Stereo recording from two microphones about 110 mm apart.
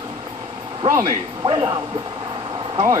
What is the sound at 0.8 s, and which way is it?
Speech, 35° right (ahead or behind).